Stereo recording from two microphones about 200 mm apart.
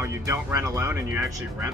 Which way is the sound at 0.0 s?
15° right (ahead or behind).